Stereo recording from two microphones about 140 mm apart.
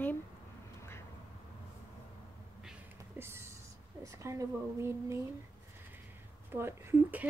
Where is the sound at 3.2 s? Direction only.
20° right (ahead or behind).